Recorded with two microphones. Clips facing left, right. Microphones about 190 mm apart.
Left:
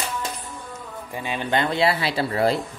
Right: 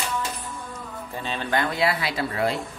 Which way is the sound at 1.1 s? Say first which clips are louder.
Left 2 dB; 10° left (ahead or behind).